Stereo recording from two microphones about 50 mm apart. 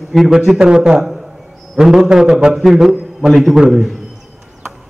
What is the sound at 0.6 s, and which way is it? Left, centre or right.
A man's voice, centre.